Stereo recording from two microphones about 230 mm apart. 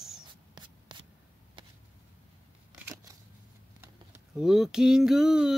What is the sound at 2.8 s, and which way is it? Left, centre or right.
Scissors, centre.